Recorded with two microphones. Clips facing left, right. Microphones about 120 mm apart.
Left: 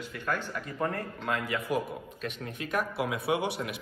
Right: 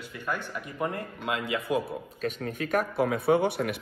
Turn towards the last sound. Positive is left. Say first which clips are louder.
# right 6 dB
turn(degrees=-50)  # may be behind; listen again after turning